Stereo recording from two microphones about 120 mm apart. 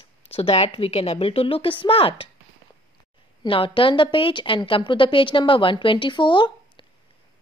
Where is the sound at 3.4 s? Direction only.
50° left (ahead or behind).